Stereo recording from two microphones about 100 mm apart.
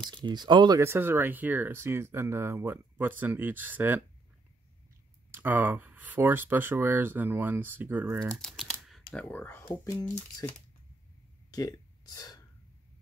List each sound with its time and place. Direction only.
0.1 s speech: 45° right (ahead or behind)
0.7 s speech: 25° right (ahead or behind)
5.3 s speech: 20° right (ahead or behind)
8.4 s speech: 5° left (ahead or behind)
9.1 s speech: 20° left (ahead or behind)
9.8 s speech: 40° left (ahead or behind)
11.5 s a sound: 40° left (ahead or behind)